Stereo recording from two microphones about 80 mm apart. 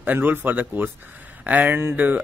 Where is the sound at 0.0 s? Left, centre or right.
Right.